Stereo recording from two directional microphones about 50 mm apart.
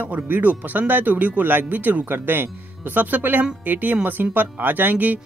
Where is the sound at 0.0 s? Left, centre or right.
Right.